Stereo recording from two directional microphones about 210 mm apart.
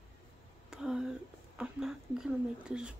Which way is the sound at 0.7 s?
5° right (ahead or behind).